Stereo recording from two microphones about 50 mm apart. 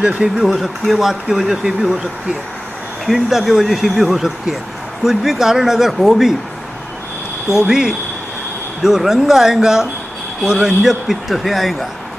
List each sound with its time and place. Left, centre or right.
0.0 s speech: centre
0.6 s speech: centre
3.1 s speech: centre
7.6 s speech: centre